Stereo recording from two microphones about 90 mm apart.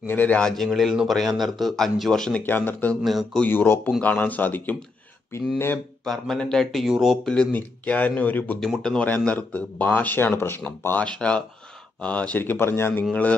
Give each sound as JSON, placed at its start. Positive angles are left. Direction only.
{"t": 0.0, "sound": "speech", "side_deg": 20}
{"t": 0.5, "sound": "speech", "side_deg": 5}
{"t": 2.4, "sound": "speech", "side_deg": 20}
{"t": 3.0, "sound": "speech", "side_deg": 0}
{"t": 3.4, "sound": "speech", "side_deg": 25}
{"t": 6.0, "sound": "speech", "side_deg": 5}
{"t": 7.5, "sound": "speech", "side_deg": 20}
{"t": 8.5, "sound": "speech", "side_deg": 5}
{"t": 13.1, "sound": "speech", "side_deg": 15}